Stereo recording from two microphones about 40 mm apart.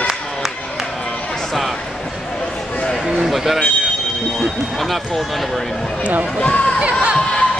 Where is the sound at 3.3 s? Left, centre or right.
Centre.